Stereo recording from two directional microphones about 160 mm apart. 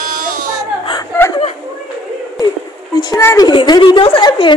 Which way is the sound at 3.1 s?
20° left (ahead or behind).